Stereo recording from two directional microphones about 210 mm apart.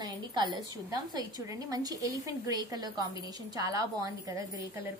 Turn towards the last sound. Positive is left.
turn(degrees=-15)  # may be behind; listen again after turning